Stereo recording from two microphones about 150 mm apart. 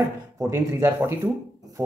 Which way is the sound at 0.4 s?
20° right (ahead or behind).